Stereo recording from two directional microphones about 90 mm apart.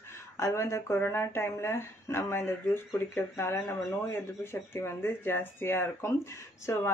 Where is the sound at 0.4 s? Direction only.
35° left (ahead or behind).